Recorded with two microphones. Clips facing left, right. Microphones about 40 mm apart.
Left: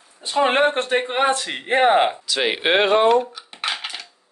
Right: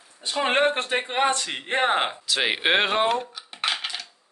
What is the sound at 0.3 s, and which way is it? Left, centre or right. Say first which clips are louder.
A man's voice: left 4 dB; centre.